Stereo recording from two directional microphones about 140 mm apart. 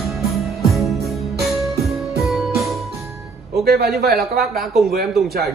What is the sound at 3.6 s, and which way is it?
Speech, 90° right.